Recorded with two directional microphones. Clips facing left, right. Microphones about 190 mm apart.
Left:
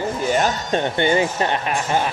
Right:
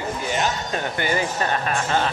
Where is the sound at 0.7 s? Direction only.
25° left (ahead or behind).